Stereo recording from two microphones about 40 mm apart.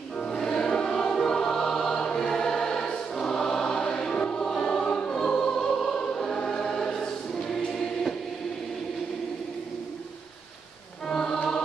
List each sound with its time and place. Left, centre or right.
0.4 s choir: centre
11.1 s music: centre